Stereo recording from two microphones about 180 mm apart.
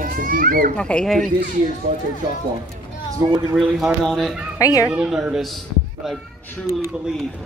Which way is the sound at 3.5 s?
Centre (ahead or behind).